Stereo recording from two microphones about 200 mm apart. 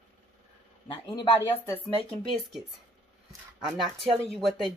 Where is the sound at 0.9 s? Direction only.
25° left (ahead or behind).